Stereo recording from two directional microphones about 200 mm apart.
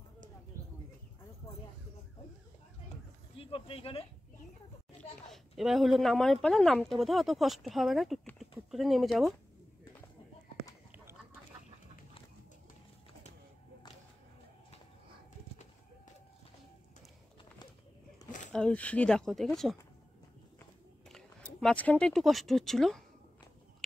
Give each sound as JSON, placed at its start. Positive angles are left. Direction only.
{"t": 3.3, "sound": "speech", "side_deg": 25}
{"t": 5.3, "sound": "speech", "side_deg": 0}
{"t": 18.5, "sound": "speech", "side_deg": 5}
{"t": 21.1, "sound": "speech", "side_deg": 0}